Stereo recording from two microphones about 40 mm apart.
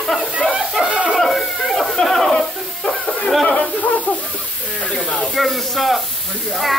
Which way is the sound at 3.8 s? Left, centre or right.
Left.